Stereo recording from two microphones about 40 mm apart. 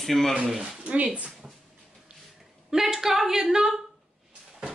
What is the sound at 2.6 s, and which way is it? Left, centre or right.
A man's voice, centre.